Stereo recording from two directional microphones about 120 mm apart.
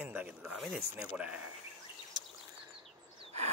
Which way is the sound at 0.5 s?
Centre (ahead or behind).